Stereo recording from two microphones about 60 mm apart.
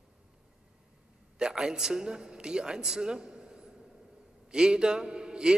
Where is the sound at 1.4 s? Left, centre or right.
Centre.